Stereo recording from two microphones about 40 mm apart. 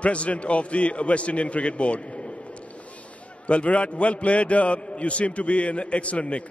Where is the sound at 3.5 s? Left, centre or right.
Left.